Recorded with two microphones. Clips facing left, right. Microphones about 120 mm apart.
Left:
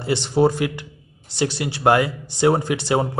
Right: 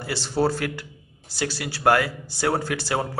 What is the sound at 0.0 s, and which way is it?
Speech, 20° left (ahead or behind).